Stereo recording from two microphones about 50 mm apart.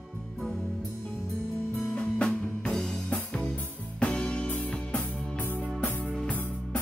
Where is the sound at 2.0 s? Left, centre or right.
Centre.